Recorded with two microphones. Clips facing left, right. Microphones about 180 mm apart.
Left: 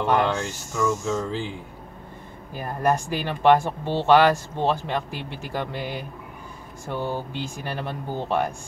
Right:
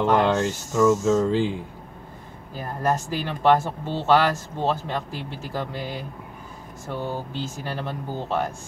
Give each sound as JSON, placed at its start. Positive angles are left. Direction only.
{"t": 0.2, "sound": "a sound", "side_deg": -20}
{"t": 0.8, "sound": "speech", "side_deg": -20}
{"t": 2.5, "sound": "speech", "side_deg": 15}